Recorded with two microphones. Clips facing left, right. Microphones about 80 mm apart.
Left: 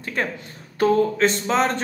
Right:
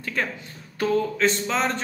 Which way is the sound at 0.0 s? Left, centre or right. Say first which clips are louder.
Left 2 dB; left.